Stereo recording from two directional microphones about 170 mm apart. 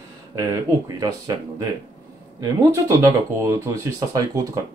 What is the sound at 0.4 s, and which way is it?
Speech, 20° right (ahead or behind).